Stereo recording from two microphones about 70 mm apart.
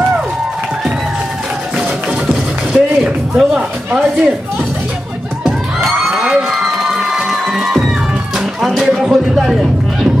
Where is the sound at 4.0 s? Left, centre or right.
Centre.